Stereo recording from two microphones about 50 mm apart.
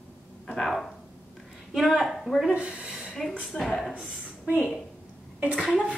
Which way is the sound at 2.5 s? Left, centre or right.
Right.